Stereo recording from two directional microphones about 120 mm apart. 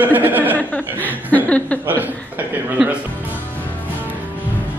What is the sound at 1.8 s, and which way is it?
A man's voice, 15° right (ahead or behind).